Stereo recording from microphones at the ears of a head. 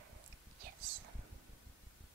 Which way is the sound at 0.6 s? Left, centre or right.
Right.